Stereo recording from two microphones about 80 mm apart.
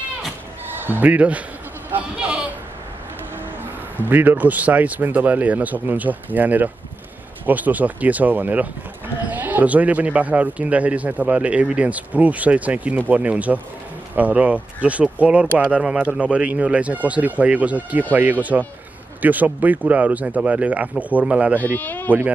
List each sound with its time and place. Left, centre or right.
0.8 s speech: right
4.0 s speech: right
21.7 s speech: left